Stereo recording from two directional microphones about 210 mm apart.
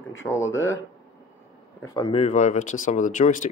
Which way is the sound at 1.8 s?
20° left (ahead or behind).